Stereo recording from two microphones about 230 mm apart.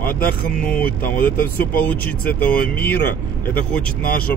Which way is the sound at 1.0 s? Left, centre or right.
Centre.